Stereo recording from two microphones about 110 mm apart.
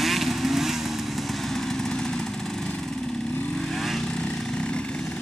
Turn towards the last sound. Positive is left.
turn(degrees=10)  # may be behind; listen again after turning